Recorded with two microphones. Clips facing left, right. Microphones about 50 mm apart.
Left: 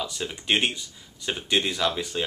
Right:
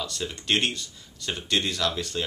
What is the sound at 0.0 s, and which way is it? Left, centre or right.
Speech, centre.